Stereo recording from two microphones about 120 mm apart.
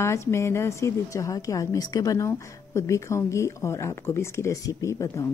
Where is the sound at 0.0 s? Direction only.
25° left (ahead or behind).